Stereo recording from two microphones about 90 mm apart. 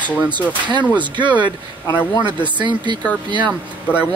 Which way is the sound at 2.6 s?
60° right (ahead or behind).